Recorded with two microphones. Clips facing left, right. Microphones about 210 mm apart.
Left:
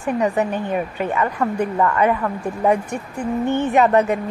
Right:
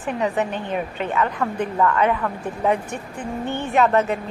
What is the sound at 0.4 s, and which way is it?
Speech, 5° left (ahead or behind).